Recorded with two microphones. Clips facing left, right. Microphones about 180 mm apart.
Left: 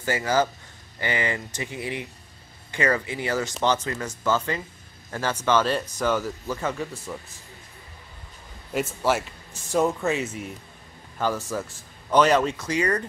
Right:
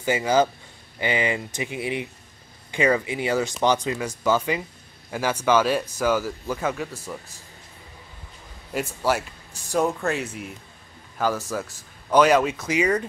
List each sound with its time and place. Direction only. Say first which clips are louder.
0.0 s speech: right 3 dB; 15° right (ahead or behind)
8.7 s speech: even; centre (ahead or behind)